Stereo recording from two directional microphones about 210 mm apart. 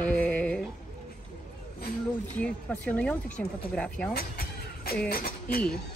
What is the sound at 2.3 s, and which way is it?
Speech, 5° left (ahead or behind).